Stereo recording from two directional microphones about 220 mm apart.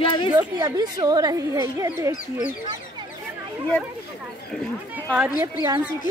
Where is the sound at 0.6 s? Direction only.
20° right (ahead or behind).